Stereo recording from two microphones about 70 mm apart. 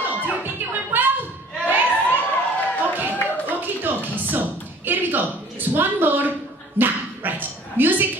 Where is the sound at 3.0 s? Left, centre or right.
Right.